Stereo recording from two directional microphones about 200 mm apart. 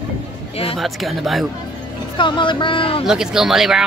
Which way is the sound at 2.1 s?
25° left (ahead or behind).